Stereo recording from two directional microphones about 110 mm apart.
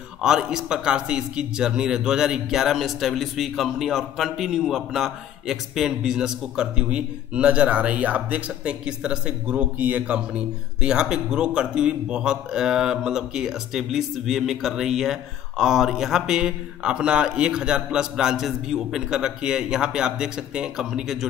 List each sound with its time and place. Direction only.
0.2 s a man's voice: 5° right (ahead or behind)